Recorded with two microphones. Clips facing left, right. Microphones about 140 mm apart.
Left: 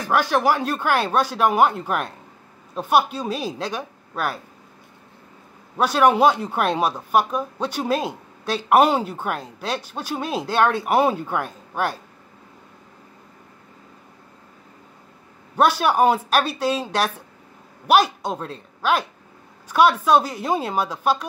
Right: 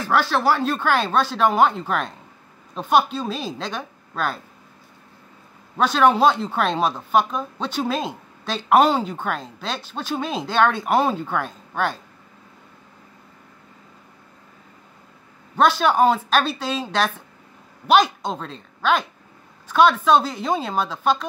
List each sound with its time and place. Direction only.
0.0 s speech: 15° left (ahead or behind)
5.8 s speech: 10° left (ahead or behind)
15.5 s speech: 10° left (ahead or behind)